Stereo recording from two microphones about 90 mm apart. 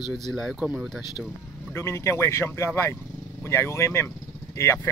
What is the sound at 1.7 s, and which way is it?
Speech, 30° left (ahead or behind).